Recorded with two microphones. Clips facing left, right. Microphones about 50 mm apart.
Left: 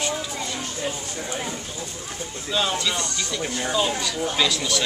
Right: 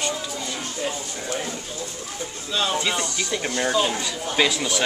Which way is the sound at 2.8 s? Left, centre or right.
Right.